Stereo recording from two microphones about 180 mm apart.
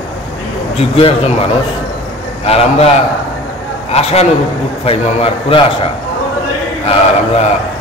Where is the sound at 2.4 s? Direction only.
35° left (ahead or behind).